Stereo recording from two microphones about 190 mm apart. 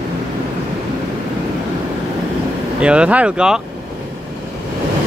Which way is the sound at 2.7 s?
5° right (ahead or behind).